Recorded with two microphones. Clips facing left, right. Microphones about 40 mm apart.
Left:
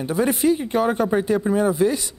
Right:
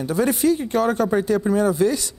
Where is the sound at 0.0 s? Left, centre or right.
Centre.